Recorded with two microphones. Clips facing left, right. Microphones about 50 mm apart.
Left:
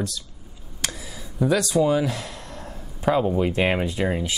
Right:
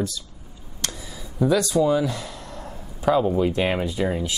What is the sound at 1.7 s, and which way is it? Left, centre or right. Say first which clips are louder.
Speech: left 2 dB; centre.